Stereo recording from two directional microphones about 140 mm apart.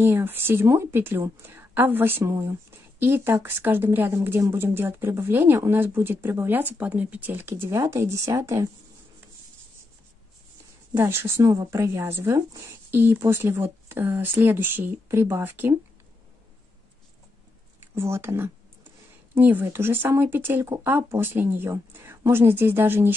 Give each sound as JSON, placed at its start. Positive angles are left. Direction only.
{"t": 0.0, "sound": "speech", "side_deg": -15}
{"t": 11.0, "sound": "speech", "side_deg": -15}
{"t": 17.9, "sound": "speech", "side_deg": -20}